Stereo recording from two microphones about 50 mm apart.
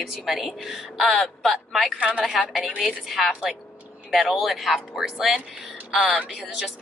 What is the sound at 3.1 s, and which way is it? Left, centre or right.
A woman's voice, centre.